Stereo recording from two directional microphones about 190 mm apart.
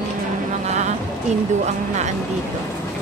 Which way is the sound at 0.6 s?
35° right (ahead or behind).